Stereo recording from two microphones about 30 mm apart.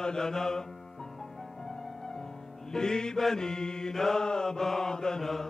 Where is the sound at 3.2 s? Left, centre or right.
Centre.